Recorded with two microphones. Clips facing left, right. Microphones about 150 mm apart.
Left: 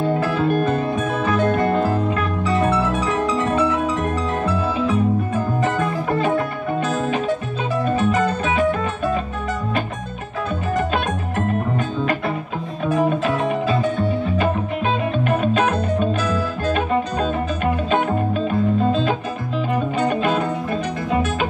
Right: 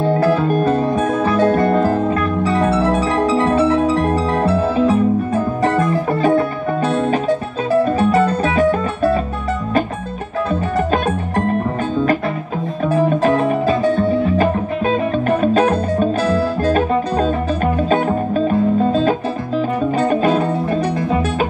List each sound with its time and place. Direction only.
0.2 s music: 35° right (ahead or behind)
4.5 s music: 35° right (ahead or behind)
6.2 s music: 40° right (ahead or behind)
12.8 s music: 40° right (ahead or behind)